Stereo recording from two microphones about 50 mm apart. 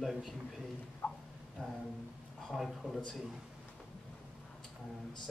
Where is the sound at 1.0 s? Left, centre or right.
Left.